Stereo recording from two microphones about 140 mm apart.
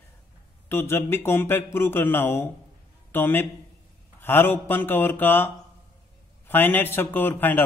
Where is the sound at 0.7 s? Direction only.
15° left (ahead or behind).